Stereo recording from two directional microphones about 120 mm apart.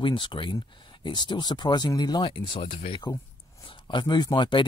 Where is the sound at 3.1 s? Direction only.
25° left (ahead or behind).